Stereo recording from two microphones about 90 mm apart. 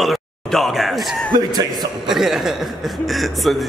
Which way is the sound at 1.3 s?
50° right (ahead or behind).